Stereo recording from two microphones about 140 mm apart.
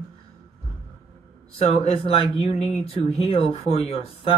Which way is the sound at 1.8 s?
45° left (ahead or behind).